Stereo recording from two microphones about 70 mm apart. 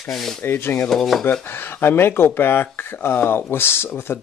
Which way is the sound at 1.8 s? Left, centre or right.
Left.